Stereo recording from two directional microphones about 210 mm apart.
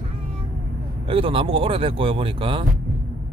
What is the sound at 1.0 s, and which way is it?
Speech, 25° right (ahead or behind).